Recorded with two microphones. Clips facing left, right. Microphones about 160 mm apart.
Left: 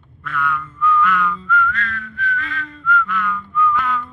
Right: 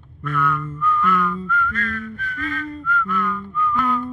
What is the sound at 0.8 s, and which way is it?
Whistling, 45° right (ahead or behind).